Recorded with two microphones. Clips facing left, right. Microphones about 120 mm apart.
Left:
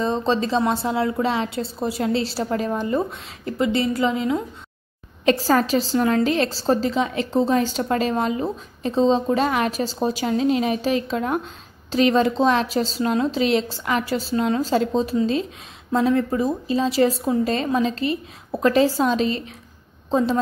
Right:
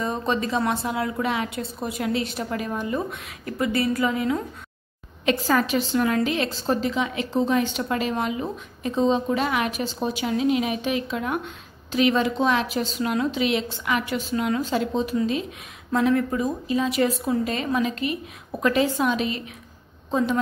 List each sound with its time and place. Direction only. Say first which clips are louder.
0.0 s a woman's voice: left 4 dB; 30° left (ahead or behind)
5.2 s a woman's voice: left 3 dB; 35° left (ahead or behind)